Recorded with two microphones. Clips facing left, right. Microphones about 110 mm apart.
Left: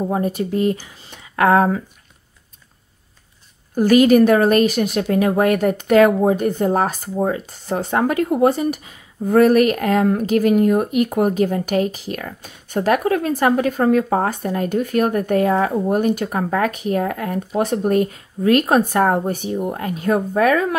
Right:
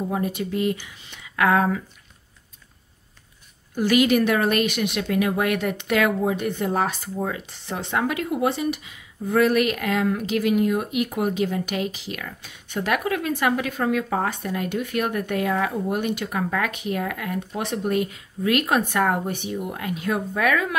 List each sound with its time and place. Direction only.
0.0 s speech: 40° left (ahead or behind)
3.7 s speech: 40° left (ahead or behind)